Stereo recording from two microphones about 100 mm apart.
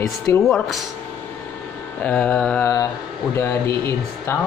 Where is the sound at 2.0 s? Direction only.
10° left (ahead or behind).